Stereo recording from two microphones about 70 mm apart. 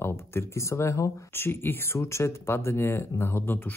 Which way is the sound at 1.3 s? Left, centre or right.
Left.